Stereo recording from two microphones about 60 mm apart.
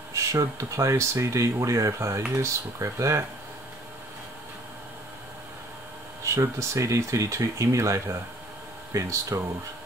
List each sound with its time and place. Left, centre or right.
0.1 s speech: right
6.2 s speech: right